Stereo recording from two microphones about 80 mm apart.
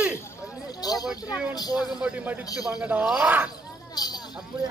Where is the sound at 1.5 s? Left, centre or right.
Left.